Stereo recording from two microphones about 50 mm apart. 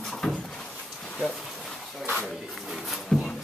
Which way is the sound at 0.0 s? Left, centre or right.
Centre.